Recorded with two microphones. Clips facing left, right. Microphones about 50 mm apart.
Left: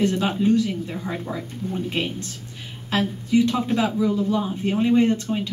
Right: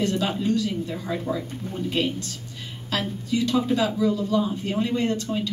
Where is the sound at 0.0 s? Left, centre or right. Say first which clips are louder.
Left 3 dB; left.